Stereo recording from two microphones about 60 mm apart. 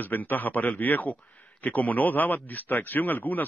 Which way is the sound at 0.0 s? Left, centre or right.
Left.